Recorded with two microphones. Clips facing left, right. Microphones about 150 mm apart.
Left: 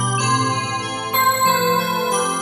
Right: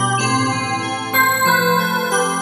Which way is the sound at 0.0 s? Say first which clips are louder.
Right 2 dB; 60° right (ahead or behind).